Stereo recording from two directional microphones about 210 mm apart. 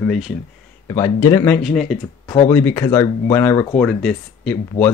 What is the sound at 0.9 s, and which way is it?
Speech, 15° left (ahead or behind).